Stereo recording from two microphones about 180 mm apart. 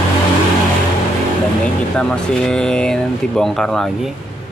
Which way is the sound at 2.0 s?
5° left (ahead or behind).